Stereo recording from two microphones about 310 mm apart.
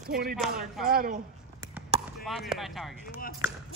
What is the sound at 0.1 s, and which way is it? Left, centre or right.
Speech, right.